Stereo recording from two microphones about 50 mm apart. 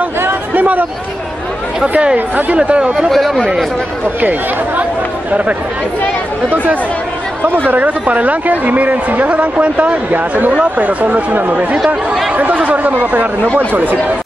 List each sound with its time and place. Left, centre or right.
0.6 s a sound: right
2.1 s speech: right
3.1 s speech: centre
4.2 s speech: right
6.5 s speech: right